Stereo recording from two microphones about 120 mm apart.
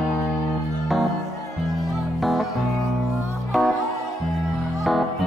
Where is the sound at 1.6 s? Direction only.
Centre (ahead or behind).